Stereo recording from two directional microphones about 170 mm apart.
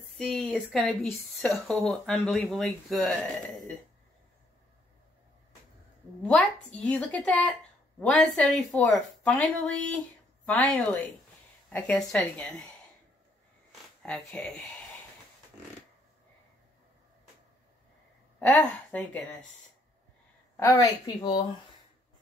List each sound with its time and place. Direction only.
0.1 s speech: centre (ahead or behind)
6.2 s a woman's voice: 5° left (ahead or behind)
14.0 s speech: 5° left (ahead or behind)
18.4 s a woman's voice: 10° left (ahead or behind)
20.5 s a woman's voice: 15° left (ahead or behind)